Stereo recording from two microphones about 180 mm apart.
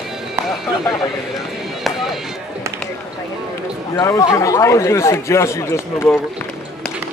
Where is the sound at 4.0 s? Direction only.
20° left (ahead or behind).